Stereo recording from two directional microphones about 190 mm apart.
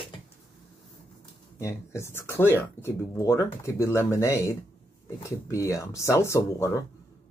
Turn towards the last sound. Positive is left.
turn(degrees=15)  # may be behind; listen again after turning